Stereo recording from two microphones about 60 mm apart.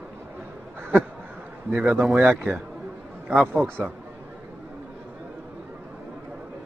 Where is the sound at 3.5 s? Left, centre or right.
Right.